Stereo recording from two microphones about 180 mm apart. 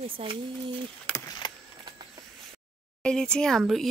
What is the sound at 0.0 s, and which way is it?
Speech, 30° right (ahead or behind).